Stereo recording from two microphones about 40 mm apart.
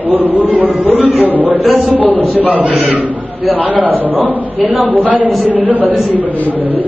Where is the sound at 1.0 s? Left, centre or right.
Right.